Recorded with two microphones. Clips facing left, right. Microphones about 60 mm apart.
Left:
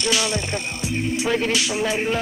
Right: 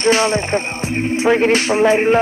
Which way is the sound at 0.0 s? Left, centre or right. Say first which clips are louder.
Right 8 dB; right.